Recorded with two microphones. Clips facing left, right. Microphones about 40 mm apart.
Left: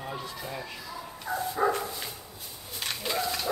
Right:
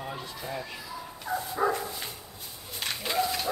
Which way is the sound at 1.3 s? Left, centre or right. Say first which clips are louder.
Right 1 dB; right.